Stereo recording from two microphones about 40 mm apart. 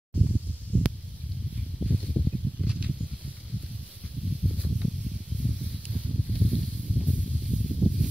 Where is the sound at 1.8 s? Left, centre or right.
Right.